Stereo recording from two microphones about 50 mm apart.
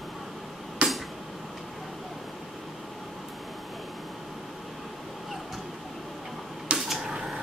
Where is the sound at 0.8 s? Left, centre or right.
Right.